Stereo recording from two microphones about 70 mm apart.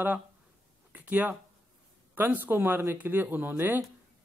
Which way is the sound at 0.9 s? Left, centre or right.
Right.